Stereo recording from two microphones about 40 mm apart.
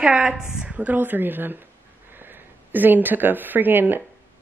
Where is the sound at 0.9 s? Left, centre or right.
Right.